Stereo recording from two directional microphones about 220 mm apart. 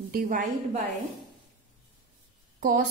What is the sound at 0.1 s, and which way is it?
Speech, 40° right (ahead or behind).